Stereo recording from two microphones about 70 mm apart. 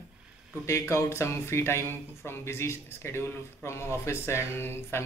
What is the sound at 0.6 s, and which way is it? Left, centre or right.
Speech, left.